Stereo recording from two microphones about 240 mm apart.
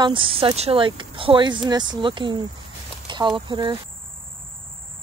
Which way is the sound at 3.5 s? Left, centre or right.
Centre.